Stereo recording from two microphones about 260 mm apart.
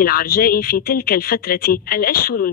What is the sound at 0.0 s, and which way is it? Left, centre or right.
Speech, left.